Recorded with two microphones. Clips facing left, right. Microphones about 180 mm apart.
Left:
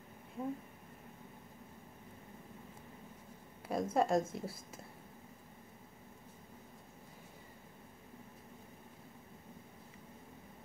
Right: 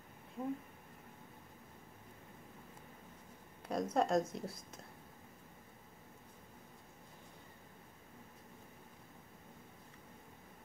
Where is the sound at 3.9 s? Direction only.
Centre (ahead or behind).